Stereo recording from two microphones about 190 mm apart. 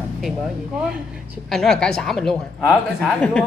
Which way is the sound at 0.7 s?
5° right (ahead or behind).